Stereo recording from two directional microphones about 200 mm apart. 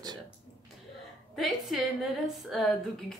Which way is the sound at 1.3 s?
Centre (ahead or behind).